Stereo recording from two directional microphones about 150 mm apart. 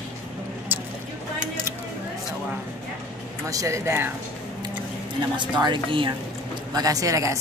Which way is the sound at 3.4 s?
20° right (ahead or behind).